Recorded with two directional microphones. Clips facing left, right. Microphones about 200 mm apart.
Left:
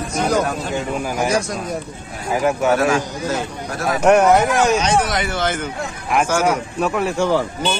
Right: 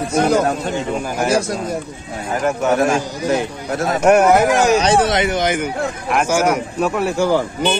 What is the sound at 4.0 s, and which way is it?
Speech, 5° right (ahead or behind).